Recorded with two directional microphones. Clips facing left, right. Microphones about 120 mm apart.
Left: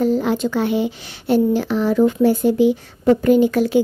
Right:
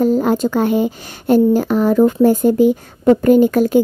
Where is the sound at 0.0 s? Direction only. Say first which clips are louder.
Right 3 dB; 45° right (ahead or behind).